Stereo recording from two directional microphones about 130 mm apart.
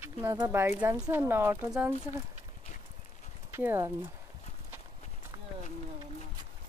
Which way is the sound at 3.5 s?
20° right (ahead or behind).